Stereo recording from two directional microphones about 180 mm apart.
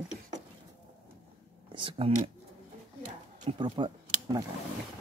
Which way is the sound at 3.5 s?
30° right (ahead or behind).